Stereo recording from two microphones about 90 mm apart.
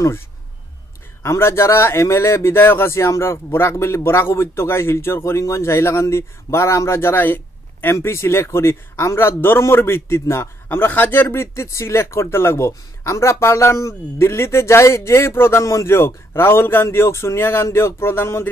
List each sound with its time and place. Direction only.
1.2 s a man's voice: 30° left (ahead or behind)